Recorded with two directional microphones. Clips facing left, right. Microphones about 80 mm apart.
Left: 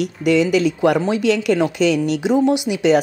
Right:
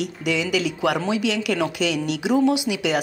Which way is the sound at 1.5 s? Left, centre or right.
Left.